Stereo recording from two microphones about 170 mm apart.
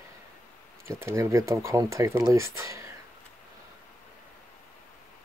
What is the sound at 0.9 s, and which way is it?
Speech, 15° right (ahead or behind).